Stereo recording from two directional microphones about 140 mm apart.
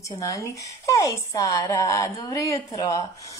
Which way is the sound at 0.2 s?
25° left (ahead or behind).